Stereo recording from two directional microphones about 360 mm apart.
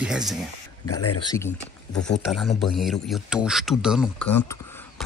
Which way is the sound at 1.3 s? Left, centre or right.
Centre.